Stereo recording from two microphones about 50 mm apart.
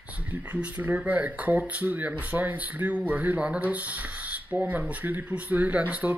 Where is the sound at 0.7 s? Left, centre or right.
Right.